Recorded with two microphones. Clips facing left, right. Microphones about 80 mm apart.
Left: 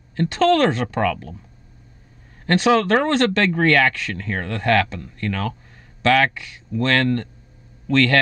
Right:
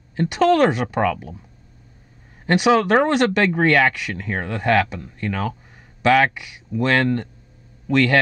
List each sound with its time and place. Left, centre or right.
0.1 s speech: centre
2.4 s speech: centre